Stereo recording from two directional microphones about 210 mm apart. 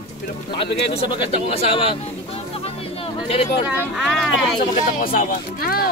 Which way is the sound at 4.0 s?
Centre (ahead or behind).